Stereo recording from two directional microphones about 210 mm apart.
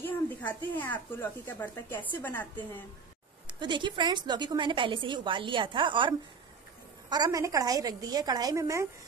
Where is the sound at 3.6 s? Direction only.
20° right (ahead or behind).